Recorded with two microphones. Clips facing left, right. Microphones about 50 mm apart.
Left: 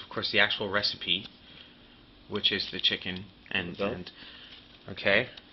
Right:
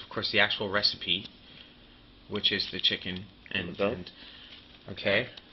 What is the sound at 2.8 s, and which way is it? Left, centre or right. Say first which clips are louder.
Speech: even; left.